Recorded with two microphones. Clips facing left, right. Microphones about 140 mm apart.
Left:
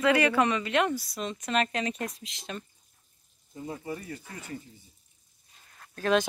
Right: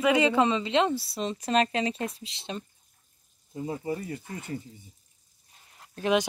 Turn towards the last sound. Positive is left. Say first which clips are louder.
# even
turn(degrees=-15)  # may be behind; listen again after turning